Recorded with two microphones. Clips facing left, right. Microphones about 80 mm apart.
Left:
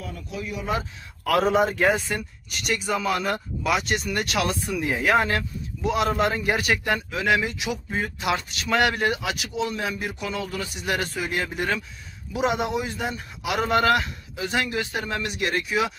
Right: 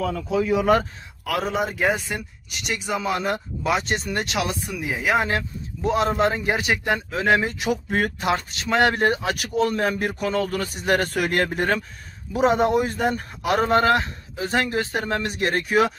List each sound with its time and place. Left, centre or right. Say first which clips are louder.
0.7 s speech: right 8 dB; right
1.2 s speech: left 4 dB; centre
4.7 s speech: left 1 dB; centre
5.2 s a man's voice: right 1 dB; right
11.1 s a man's voice: right 5 dB; right